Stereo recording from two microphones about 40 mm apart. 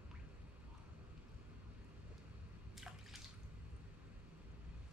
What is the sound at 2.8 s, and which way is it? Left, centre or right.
Drip, centre.